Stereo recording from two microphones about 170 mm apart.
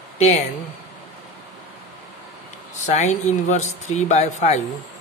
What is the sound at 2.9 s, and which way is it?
Speech, 45° left (ahead or behind).